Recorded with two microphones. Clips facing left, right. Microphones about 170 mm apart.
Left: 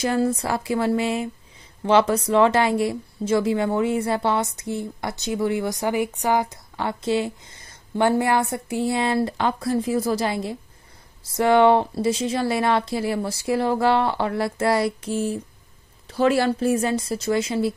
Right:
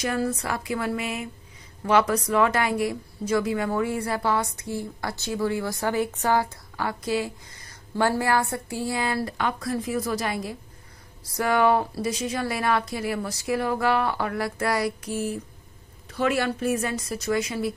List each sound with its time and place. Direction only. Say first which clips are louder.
0.0 s a woman's voice: left 5 dB; 30° left (ahead or behind)